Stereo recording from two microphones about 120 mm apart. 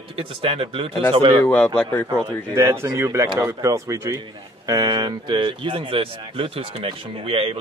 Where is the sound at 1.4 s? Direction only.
15° left (ahead or behind).